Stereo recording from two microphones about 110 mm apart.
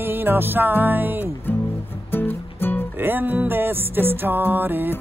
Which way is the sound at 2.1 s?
20° left (ahead or behind).